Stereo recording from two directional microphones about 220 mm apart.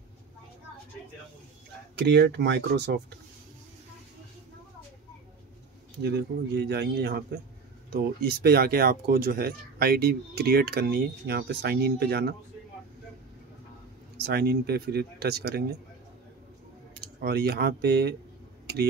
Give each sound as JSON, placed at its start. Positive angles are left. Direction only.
{"t": 2.0, "sound": "speech", "side_deg": -50}
{"t": 6.0, "sound": "speech", "side_deg": -50}
{"t": 14.2, "sound": "speech", "side_deg": -45}
{"t": 17.2, "sound": "speech", "side_deg": -45}